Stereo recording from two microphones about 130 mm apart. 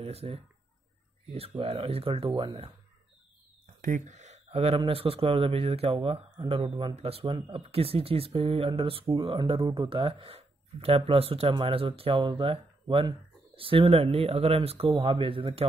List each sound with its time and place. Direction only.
0.0 s speech: 50° right (ahead or behind)
1.6 s speech: 50° right (ahead or behind)
3.8 s speech: 80° right; by 15.6 s 45° right (ahead or behind)